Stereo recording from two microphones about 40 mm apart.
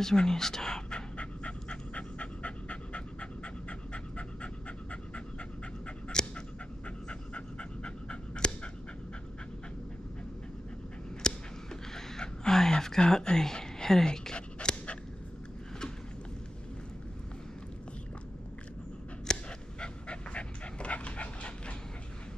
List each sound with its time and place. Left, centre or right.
0.0 s pant: centre; by 5.2 s left
5.9 s dog: left
11.2 s a sound: centre
19.3 s dog: centre
19.8 s dog: left